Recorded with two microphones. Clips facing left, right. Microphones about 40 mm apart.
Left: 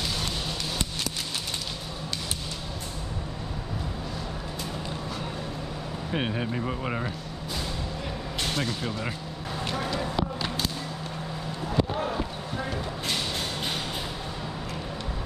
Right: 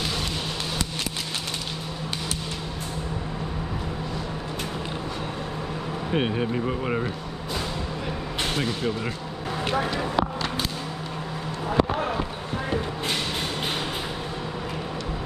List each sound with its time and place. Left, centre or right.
6.1 s speech: centre
9.7 s speech: right